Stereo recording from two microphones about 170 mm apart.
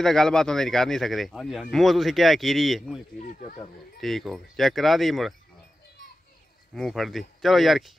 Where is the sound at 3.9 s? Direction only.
Centre (ahead or behind).